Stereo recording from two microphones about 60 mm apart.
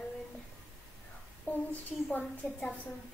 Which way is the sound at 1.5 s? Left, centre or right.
Left.